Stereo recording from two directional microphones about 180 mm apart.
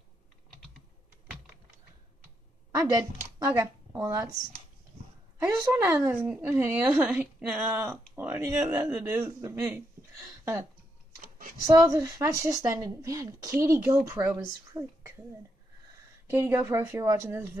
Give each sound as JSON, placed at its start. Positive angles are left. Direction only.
{"t": 3.0, "sound": "speech", "side_deg": -20}
{"t": 5.6, "sound": "speech", "side_deg": -15}
{"t": 11.1, "sound": "a sound", "side_deg": -50}
{"t": 11.6, "sound": "a woman's voice", "side_deg": -20}
{"t": 16.3, "sound": "speech", "side_deg": -10}